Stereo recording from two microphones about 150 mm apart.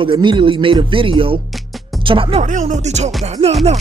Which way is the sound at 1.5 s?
Centre (ahead or behind).